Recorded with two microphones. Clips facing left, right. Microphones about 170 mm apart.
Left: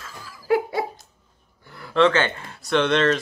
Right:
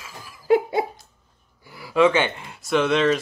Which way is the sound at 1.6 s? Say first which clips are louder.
Right 1 dB; 5° right (ahead or behind).